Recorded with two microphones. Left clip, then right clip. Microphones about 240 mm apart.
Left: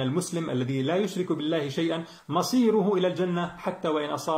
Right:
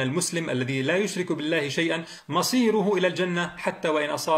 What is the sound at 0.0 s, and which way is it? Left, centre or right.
Speech, right.